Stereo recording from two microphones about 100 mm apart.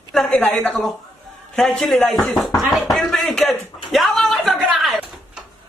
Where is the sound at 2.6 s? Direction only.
Centre (ahead or behind).